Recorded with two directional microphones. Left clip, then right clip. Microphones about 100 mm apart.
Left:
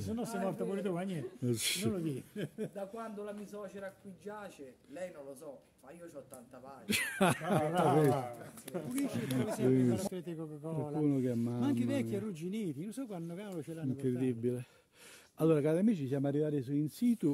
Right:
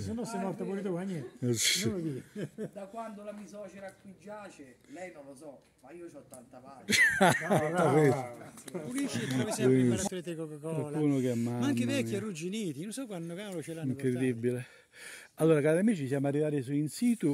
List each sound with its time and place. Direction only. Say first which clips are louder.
0.2 s speech: right 1 dB; 30° left (ahead or behind)
0.5 s speech: right 1 dB; 15° right (ahead or behind)
2.0 s speech: right 1 dB; 20° right (ahead or behind)
3.0 s a man's voice: right 1 dB; 35° left (ahead or behind)
6.9 s speech: right 8 dB; 5° right (ahead or behind)
9.0 s speech: right 4 dB; 5° right (ahead or behind)